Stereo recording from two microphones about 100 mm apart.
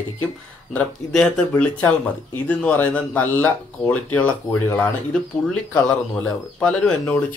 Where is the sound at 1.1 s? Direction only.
10° left (ahead or behind).